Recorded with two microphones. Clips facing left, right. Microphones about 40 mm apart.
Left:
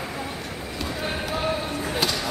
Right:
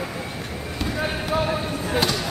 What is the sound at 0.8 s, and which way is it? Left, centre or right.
Basketball bounce, centre.